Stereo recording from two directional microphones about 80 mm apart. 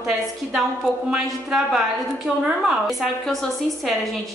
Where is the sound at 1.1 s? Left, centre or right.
Centre.